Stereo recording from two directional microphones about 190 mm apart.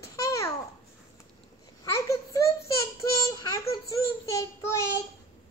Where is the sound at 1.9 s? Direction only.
15° left (ahead or behind).